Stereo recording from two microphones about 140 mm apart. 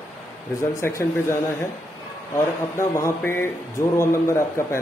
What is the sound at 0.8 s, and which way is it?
Speech, 20° left (ahead or behind).